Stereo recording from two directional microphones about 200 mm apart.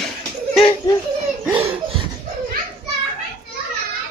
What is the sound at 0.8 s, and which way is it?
Speech, 15° left (ahead or behind).